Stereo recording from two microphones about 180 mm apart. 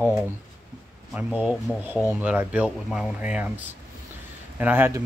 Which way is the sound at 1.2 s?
5° right (ahead or behind).